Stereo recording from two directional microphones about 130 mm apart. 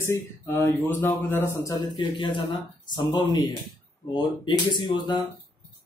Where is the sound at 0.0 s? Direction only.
20° left (ahead or behind).